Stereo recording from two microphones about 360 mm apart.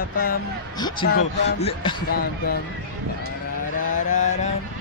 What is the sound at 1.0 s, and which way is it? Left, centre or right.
Speech, left.